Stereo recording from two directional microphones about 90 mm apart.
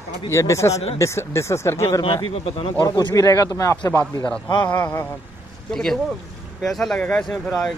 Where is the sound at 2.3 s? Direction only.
90° left.